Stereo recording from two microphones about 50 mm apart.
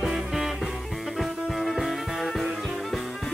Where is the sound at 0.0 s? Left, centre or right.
Centre.